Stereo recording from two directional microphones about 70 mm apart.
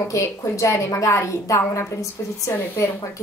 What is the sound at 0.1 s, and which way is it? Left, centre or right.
A woman's voice, left.